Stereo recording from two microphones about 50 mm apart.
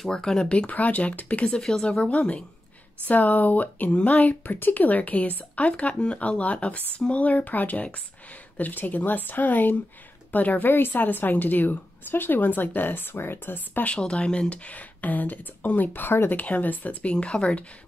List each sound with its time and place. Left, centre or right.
0.1 s speech: centre
0.7 s speech: left
1.6 s a woman's voice: centre; by 13.8 s left
13.9 s speech: centre; by 16.9 s left
17.0 s speech: left